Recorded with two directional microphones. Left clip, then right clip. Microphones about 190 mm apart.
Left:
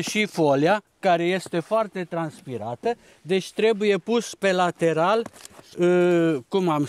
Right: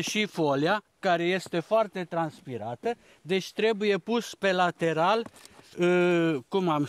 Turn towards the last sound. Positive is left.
turn(degrees=10)  # may be behind; listen again after turning